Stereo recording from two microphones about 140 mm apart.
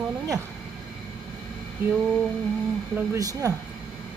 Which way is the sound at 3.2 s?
25° right (ahead or behind).